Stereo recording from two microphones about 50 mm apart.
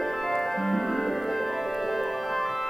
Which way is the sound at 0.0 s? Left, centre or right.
Centre.